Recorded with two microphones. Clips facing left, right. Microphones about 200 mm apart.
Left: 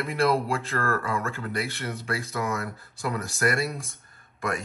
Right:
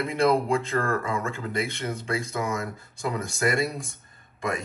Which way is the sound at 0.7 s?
15° right (ahead or behind).